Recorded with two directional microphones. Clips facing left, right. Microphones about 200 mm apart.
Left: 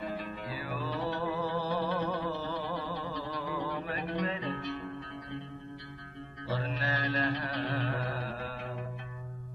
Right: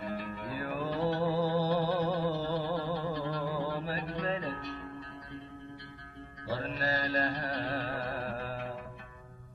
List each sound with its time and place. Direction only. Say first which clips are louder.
0.5 s music: right 4 dB; 50° right (ahead or behind)
6.5 s music: right 1 dB; 40° right (ahead or behind)